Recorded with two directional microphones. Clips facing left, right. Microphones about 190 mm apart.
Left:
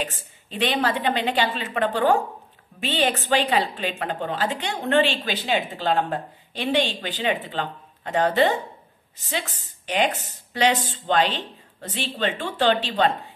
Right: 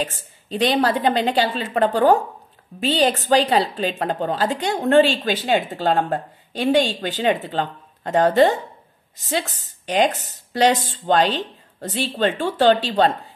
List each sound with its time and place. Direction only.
0.5 s a woman's voice: 40° right (ahead or behind)